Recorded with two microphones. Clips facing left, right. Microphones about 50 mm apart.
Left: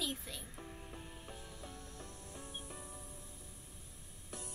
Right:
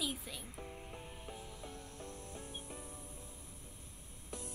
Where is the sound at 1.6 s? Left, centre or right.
Right.